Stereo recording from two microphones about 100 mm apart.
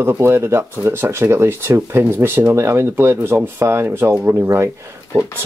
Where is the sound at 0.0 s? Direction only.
25° right (ahead or behind).